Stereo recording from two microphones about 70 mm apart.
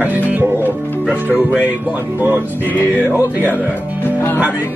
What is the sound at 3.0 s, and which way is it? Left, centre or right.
Music, left.